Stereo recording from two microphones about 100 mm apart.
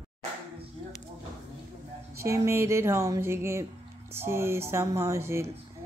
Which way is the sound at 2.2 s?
30° right (ahead or behind).